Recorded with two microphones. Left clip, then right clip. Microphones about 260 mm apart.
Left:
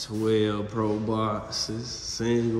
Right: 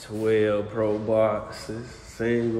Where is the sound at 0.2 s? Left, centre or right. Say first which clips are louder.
Right 3 dB; centre.